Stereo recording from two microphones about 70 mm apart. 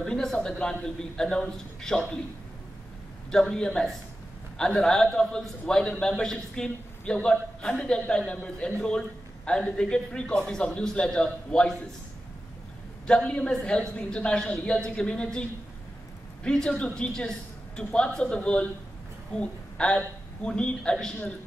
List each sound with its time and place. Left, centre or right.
0.0 s a man's voice: centre
3.3 s a man's voice: centre
13.0 s a man's voice: centre
16.4 s a man's voice: centre